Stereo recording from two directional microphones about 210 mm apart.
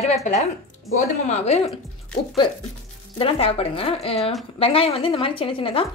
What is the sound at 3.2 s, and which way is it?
Speech, 25° left (ahead or behind).